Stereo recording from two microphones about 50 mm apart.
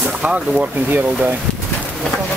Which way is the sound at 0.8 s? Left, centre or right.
Right.